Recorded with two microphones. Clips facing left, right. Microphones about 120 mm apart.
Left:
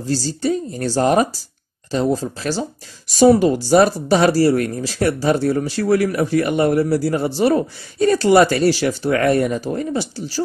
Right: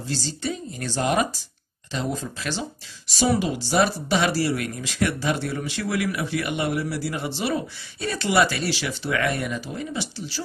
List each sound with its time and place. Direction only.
0.0 s speech: 40° left (ahead or behind)